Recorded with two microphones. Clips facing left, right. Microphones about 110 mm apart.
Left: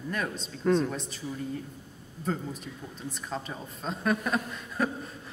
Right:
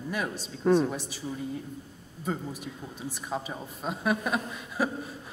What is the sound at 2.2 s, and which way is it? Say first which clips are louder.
Speech: even; 5° right (ahead or behind).